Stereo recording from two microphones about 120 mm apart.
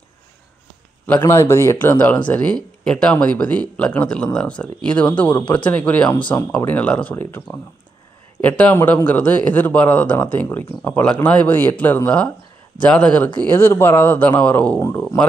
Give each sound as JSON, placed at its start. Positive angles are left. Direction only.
{"t": 1.2, "sound": "speech", "side_deg": 25}